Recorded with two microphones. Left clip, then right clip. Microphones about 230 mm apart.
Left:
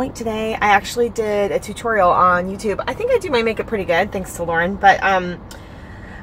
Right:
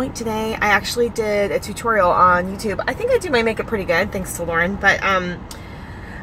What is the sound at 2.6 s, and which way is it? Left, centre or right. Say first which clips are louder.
A woman's voice: left 1 dB; centre.